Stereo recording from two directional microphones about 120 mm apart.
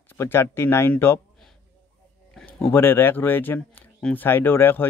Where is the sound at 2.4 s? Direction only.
20° left (ahead or behind).